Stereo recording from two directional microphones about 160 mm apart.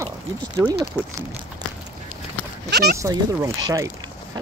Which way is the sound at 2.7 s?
85° right.